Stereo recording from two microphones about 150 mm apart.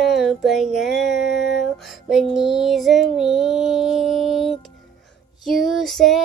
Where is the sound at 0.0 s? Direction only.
Centre (ahead or behind).